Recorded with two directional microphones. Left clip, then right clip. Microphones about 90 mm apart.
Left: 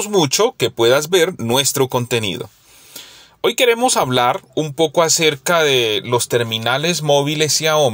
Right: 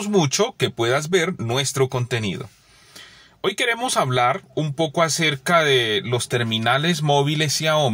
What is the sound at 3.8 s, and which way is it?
Speech, 15° left (ahead or behind).